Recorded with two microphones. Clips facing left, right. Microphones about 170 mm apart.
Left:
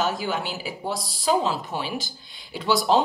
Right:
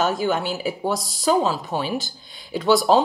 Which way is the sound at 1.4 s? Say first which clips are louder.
Right 4 dB; 45° right (ahead or behind).